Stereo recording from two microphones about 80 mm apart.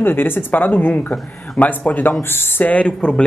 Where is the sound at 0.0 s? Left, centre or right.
Left.